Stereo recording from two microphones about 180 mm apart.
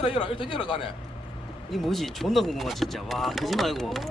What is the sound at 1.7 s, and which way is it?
Speech, centre (ahead or behind).